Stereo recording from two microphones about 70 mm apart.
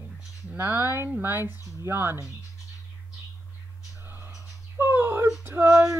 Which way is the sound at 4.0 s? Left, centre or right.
Right.